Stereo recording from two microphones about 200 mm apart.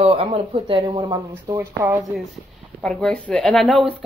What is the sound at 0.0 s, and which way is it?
Speech, 30° right (ahead or behind).